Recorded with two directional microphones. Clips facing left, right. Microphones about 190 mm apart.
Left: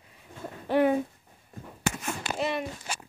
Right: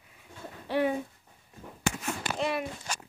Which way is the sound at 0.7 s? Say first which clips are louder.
Left 5 dB; 50° left (ahead or behind).